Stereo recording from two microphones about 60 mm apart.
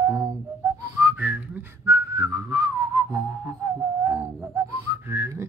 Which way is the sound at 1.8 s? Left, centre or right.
Right.